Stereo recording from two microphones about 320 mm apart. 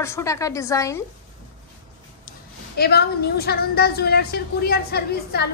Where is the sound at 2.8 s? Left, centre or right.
Left.